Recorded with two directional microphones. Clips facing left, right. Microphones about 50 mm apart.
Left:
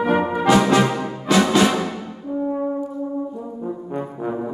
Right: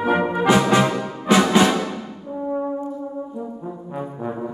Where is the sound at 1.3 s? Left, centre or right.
Right.